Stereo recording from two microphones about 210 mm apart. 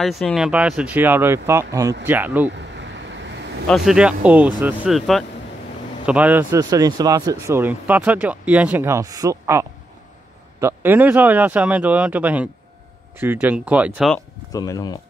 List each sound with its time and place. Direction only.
0.0 s speech: centre (ahead or behind)
2.8 s vehicle: 55° right (ahead or behind)
3.6 s speech: centre (ahead or behind)
14.5 s speech: 15° left (ahead or behind)